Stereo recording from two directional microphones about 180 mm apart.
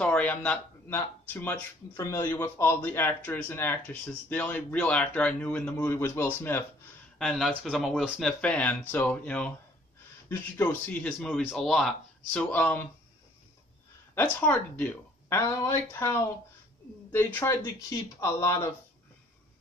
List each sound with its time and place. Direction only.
0.0 s speech: 10° left (ahead or behind)
7.2 s speech: centre (ahead or behind)
14.1 s speech: 10° left (ahead or behind)